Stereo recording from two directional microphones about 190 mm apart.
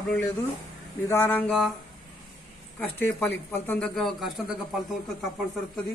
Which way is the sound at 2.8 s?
10° left (ahead or behind).